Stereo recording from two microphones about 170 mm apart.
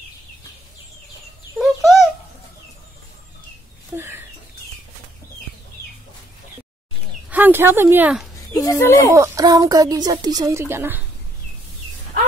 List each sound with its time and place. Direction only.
1.6 s a sound: centre (ahead or behind)
3.9 s bird: 15° right (ahead or behind)
7.2 s speech: 10° right (ahead or behind)
8.5 s speech: 15° left (ahead or behind)
9.1 s speech: 15° right (ahead or behind)